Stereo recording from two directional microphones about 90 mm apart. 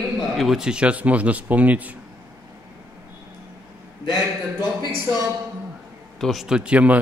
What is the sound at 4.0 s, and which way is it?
Speech, 50° left (ahead or behind).